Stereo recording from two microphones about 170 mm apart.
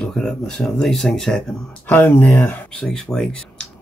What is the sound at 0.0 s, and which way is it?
Speech, 5° left (ahead or behind).